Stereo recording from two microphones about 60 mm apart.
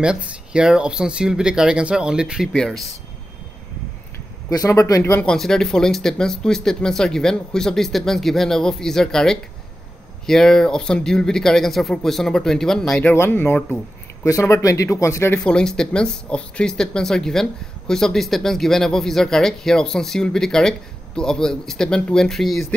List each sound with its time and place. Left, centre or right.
0.0 s speech: centre
2.5 s speech: centre
4.5 s speech: left
5.2 s speech: centre
13.3 s speech: left
14.2 s speech: left
15.4 s speech: centre